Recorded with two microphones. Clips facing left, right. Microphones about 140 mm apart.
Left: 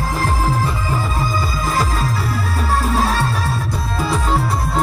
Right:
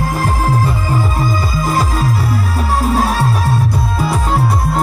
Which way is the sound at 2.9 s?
15° right (ahead or behind).